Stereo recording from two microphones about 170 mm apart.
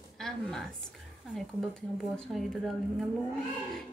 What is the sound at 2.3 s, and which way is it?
Speech, centre (ahead or behind).